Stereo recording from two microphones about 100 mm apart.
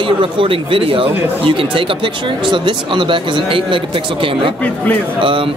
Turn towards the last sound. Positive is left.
turn(degrees=-60)  # may be behind; listen again after turning